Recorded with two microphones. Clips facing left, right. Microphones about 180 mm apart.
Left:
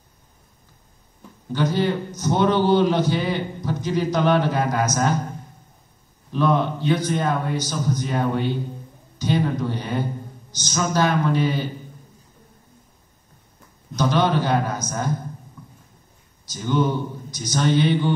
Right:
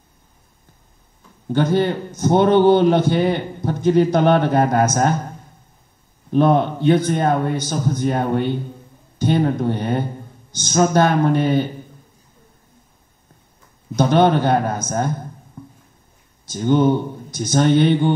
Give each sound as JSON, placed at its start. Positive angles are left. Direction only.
{"t": 1.5, "sound": "a man's voice", "side_deg": -55}
{"t": 6.3, "sound": "a man's voice", "side_deg": -55}
{"t": 13.9, "sound": "a man's voice", "side_deg": -55}
{"t": 16.4, "sound": "a man's voice", "side_deg": -55}